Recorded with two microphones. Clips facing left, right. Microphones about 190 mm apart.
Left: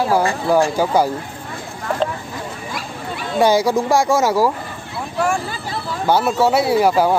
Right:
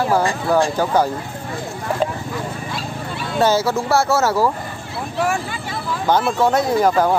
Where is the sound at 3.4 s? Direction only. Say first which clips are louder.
Left 2 dB; 15° left (ahead or behind).